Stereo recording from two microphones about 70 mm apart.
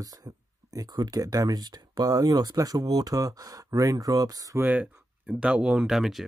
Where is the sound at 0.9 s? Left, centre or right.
Right.